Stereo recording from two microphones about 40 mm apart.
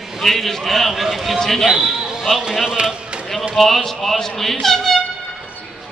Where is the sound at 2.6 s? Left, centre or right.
Centre.